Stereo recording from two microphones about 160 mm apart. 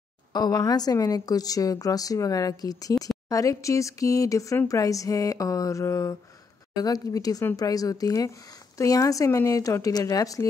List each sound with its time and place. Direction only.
0.3 s speech: 25° left (ahead or behind)